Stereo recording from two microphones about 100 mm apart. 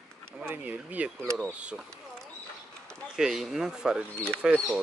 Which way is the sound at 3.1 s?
5° right (ahead or behind).